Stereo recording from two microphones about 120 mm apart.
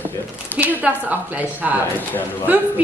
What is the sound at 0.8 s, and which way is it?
Speech, 15° right (ahead or behind).